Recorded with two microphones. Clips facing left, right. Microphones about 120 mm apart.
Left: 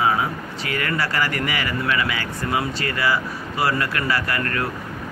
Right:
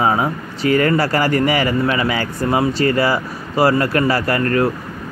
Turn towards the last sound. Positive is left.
turn(degrees=-30)  # may be behind; listen again after turning